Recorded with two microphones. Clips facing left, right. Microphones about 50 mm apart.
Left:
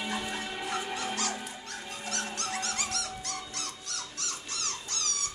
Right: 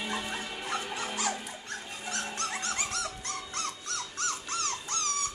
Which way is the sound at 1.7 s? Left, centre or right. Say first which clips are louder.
Right 2 dB; right.